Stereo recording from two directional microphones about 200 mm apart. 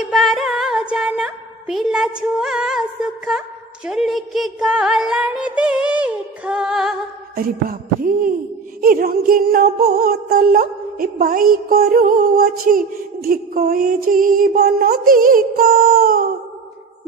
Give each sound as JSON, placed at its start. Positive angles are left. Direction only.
{"t": 0.1, "sound": "music", "side_deg": 0}
{"t": 7.3, "sound": "music", "side_deg": -45}